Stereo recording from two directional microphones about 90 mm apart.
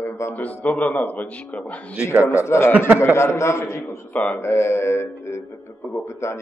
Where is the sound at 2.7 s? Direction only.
15° right (ahead or behind).